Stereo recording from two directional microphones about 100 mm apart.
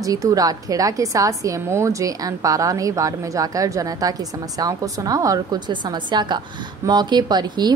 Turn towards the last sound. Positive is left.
turn(degrees=-45)  # may be behind; listen again after turning